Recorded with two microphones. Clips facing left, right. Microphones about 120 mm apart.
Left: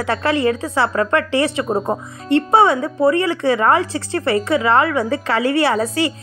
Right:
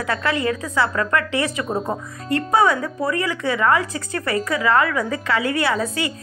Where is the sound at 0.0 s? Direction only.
35° left (ahead or behind).